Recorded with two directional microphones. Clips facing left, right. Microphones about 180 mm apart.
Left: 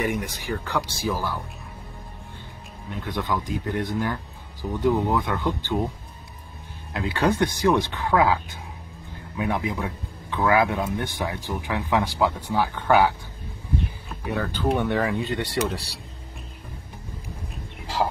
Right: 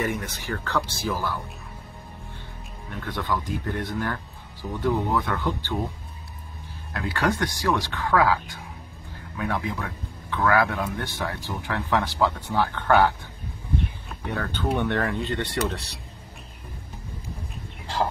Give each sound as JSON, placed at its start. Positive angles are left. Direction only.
{"t": 0.0, "sound": "speech", "side_deg": 15}
{"t": 2.9, "sound": "speech", "side_deg": 15}
{"t": 6.9, "sound": "speech", "side_deg": 20}